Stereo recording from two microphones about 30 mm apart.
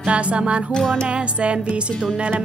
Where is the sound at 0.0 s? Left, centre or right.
Right.